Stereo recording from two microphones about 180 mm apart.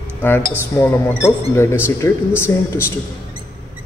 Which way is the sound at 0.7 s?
10° left (ahead or behind).